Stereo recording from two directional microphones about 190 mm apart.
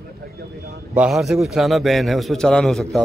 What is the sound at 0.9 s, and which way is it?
A man's voice, 5° right (ahead or behind).